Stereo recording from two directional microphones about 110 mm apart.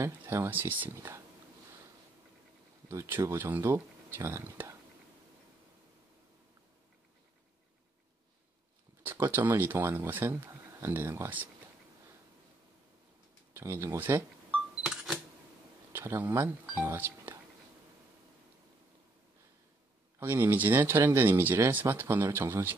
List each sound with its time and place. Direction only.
0.0 s speech: 25° right (ahead or behind)
2.9 s speech: 25° right (ahead or behind)
9.0 s speech: 20° right (ahead or behind)
13.5 s cash register: 25° right (ahead or behind)
15.9 s speech: 20° right (ahead or behind)
20.2 s speech: 20° right (ahead or behind)